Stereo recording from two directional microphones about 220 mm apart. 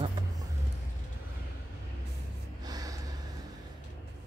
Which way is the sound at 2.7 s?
15° right (ahead or behind).